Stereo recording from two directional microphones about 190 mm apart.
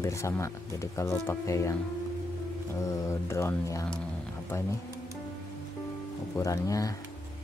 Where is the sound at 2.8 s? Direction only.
15° left (ahead or behind).